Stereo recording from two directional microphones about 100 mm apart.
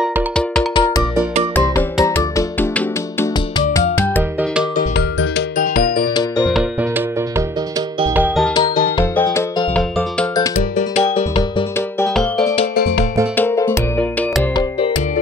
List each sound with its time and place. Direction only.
0.7 s music: 50° left (ahead or behind)
2.0 s music: 30° left (ahead or behind)
6.1 s music: 45° left (ahead or behind)
8.5 s music: 50° left (ahead or behind)
9.8 s music: 10° left (ahead or behind)
11.1 s music: 55° left (ahead or behind)
13.6 s music: 20° left (ahead or behind)